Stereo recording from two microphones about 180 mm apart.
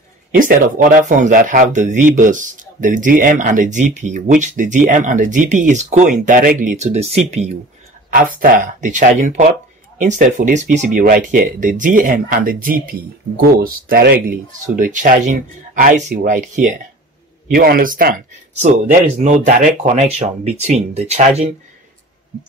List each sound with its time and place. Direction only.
0.3 s speech: 50° right (ahead or behind)
8.4 s speech: 50° right (ahead or behind)
17.5 s speech: 55° right (ahead or behind); by 21.5 s 35° right (ahead or behind)